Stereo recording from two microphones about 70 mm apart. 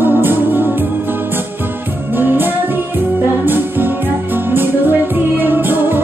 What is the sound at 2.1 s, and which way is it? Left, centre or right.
Music, right.